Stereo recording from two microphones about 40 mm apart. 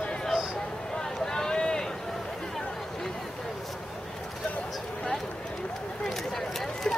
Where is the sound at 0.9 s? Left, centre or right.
Centre.